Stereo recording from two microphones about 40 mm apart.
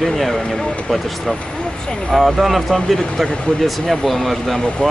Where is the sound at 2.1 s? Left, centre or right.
Centre.